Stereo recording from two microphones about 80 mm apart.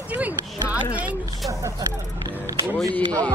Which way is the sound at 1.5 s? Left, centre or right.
Right.